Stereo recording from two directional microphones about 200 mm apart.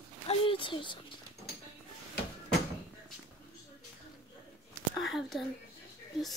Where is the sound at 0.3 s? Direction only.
25° left (ahead or behind).